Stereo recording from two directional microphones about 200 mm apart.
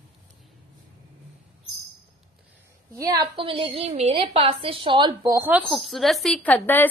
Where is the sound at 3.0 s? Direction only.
20° right (ahead or behind).